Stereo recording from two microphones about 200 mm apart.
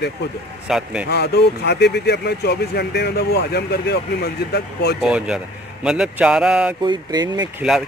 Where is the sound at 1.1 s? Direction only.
55° left (ahead or behind).